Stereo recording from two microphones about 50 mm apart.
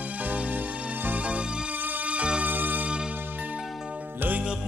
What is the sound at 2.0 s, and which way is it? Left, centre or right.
Music, right.